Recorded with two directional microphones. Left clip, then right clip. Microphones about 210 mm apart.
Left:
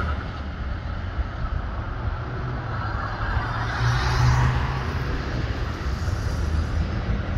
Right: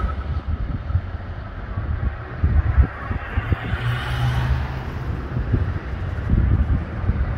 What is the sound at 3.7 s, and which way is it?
Vehicle, 30° right (ahead or behind).